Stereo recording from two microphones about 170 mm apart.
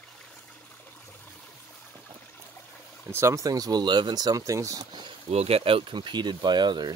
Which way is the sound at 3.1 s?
15° right (ahead or behind).